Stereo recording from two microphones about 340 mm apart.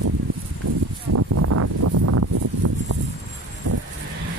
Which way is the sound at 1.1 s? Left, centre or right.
Right.